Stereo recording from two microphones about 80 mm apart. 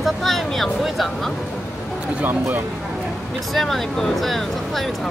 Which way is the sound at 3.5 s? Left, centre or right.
Centre.